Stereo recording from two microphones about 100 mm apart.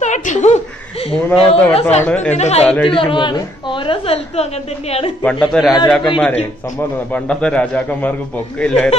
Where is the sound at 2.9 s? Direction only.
55° left (ahead or behind); by 5.1 s 85° left.